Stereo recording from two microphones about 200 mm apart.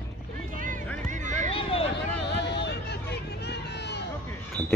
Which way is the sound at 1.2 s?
40° right (ahead or behind).